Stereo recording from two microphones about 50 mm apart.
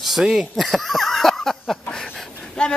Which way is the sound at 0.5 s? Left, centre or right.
Centre.